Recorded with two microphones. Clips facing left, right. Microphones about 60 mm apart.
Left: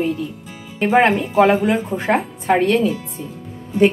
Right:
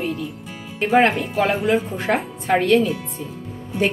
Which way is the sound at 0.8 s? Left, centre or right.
Left.